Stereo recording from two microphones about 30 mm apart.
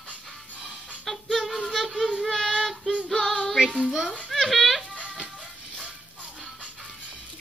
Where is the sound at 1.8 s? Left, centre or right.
Centre.